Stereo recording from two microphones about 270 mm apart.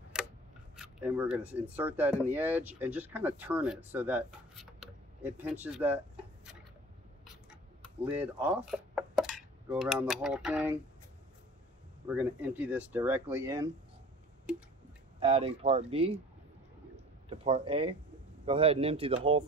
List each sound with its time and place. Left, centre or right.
0.7 s speech: centre
8.0 s speech: centre
12.1 s speech: centre
14.5 s speech: centre
15.1 s speech: right
17.3 s speech: centre